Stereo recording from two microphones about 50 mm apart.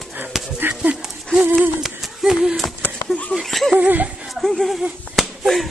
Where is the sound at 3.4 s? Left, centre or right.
Centre.